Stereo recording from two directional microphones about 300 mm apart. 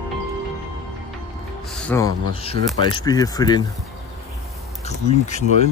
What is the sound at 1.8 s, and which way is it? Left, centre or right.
Speech, centre.